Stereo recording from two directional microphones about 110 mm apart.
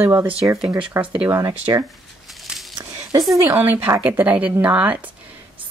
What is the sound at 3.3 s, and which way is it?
Speech, 25° right (ahead or behind).